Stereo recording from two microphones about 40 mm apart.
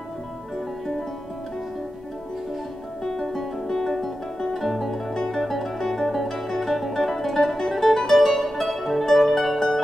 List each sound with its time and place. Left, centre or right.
3.0 s music: centre
4.6 s music: centre
5.0 s music: centre